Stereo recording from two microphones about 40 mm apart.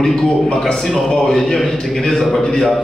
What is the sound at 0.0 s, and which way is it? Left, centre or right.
A man's voice, centre.